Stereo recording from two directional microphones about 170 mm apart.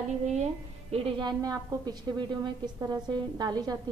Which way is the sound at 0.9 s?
30° right (ahead or behind).